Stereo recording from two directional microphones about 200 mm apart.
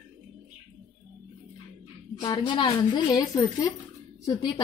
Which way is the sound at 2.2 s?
25° left (ahead or behind).